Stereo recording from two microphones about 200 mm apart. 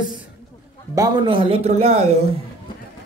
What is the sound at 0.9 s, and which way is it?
A man's voice, 20° right (ahead or behind).